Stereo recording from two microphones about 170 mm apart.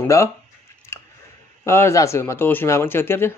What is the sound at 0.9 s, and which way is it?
Scissors, 15° left (ahead or behind).